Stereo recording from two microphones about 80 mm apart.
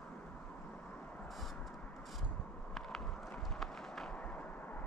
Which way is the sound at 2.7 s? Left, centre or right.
Centre.